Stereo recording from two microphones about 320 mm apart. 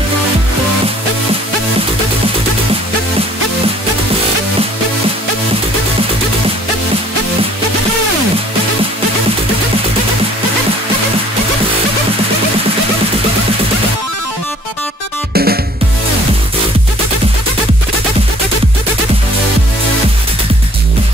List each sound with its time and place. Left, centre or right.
15.3 s music: right